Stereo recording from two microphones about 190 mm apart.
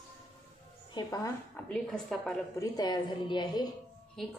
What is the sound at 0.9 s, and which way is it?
Speech, 20° left (ahead or behind).